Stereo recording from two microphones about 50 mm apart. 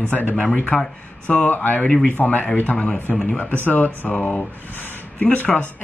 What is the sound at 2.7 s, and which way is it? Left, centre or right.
Speech, left.